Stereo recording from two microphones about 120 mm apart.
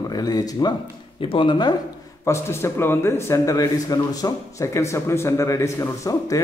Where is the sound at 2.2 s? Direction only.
20° left (ahead or behind).